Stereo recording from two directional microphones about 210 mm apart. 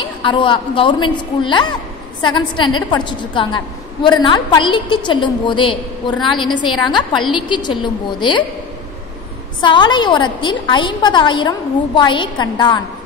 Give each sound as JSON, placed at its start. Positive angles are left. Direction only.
{"t": 0.0, "sound": "a woman's voice", "side_deg": 20}
{"t": 9.6, "sound": "a woman's voice", "side_deg": 20}